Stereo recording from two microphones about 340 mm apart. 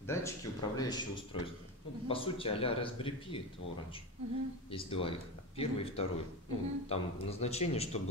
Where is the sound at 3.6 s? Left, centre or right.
Left.